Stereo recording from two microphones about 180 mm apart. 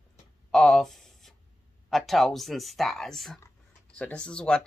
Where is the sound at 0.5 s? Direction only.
5° left (ahead or behind).